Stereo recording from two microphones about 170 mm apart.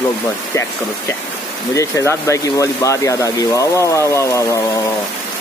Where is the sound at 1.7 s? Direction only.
20° left (ahead or behind).